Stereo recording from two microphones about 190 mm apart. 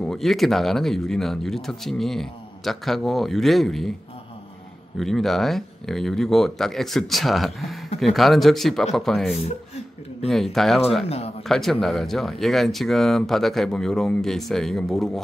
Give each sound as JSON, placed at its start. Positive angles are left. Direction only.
{"t": 0.0, "sound": "speech", "side_deg": 0}
{"t": 4.9, "sound": "speech", "side_deg": 0}
{"t": 11.1, "sound": "speech", "side_deg": 30}
{"t": 11.4, "sound": "speech", "side_deg": 0}